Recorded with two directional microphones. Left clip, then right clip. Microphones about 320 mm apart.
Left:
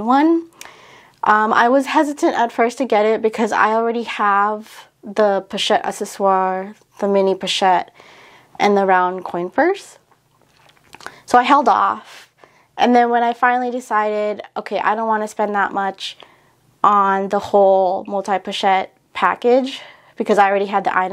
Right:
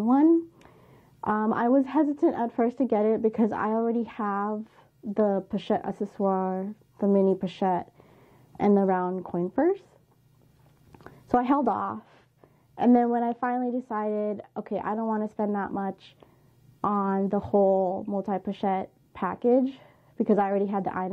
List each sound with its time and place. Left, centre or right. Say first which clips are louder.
0.1 s speech: left 7 dB; centre
11.0 s speech: left 12 dB; centre
17.5 s speech: left 10 dB; left
18.2 s speech: left 12 dB; centre